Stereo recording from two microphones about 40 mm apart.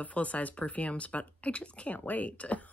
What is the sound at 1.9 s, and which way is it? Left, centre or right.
Speech, left.